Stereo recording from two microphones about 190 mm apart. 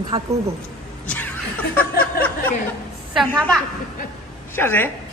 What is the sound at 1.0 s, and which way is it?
Snicker, 5° left (ahead or behind).